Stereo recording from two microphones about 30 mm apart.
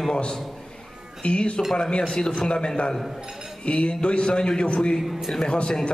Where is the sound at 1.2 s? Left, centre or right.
Left.